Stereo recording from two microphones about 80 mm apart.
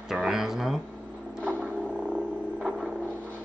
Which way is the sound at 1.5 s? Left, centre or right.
Centre.